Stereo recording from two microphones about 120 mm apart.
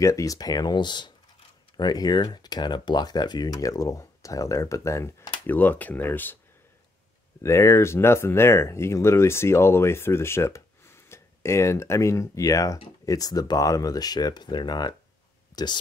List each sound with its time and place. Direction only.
0.0 s speech: 25° left (ahead or behind)
7.4 s speech: 25° left (ahead or behind)